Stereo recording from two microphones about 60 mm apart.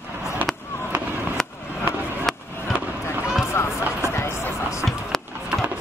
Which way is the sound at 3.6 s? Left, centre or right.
Left.